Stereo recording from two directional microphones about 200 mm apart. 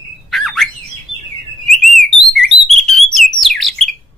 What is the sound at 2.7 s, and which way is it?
Bird, centre (ahead or behind).